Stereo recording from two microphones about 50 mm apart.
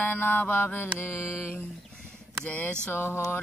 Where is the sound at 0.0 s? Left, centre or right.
Left.